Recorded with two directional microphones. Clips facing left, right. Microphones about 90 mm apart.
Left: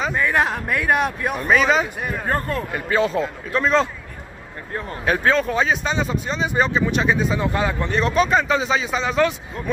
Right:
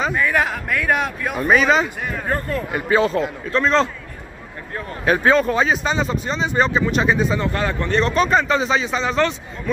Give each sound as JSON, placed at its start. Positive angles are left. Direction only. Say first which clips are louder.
{"t": 0.1, "sound": "speech", "louder": "even", "side_deg": 25}
{"t": 1.3, "sound": "speech", "louder": "right 3 dB", "side_deg": -15}
{"t": 1.6, "sound": "speech", "louder": "right 1 dB", "side_deg": 0}
{"t": 2.3, "sound": "a man's voice", "louder": "right 1 dB", "side_deg": 45}
{"t": 2.7, "sound": "speech", "louder": "right 3 dB", "side_deg": -5}
{"t": 5.0, "sound": "speech", "louder": "right 3 dB", "side_deg": -5}
{"t": 7.4, "sound": "speech", "louder": "even", "side_deg": 15}